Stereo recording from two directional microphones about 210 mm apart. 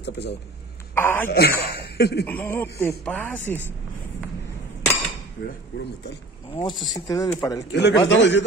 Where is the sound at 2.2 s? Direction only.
10° left (ahead or behind).